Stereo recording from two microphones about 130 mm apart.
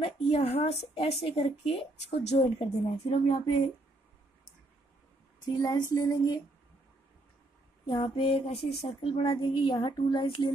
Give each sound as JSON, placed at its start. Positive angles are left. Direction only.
{"t": 0.0, "sound": "speech", "side_deg": 50}
{"t": 5.6, "sound": "a sound", "side_deg": 30}
{"t": 7.8, "sound": "speech", "side_deg": 40}